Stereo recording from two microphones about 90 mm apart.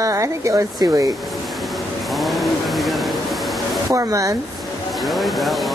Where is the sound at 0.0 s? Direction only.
35° right (ahead or behind).